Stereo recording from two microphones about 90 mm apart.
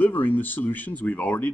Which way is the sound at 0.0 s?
20° left (ahead or behind).